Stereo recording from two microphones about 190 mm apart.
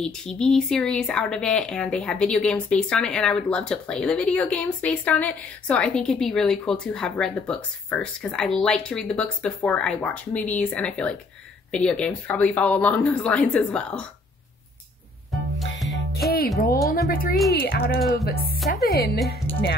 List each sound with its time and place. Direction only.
0.0 s speech: 5° left (ahead or behind)
15.8 s music: centre (ahead or behind)
17.1 s speech: 50° left (ahead or behind)
17.6 s music: 55° left (ahead or behind)
19.5 s speech: 10° left (ahead or behind)